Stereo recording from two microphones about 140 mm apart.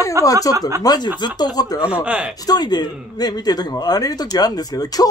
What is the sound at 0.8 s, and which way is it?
Speech, 30° left (ahead or behind).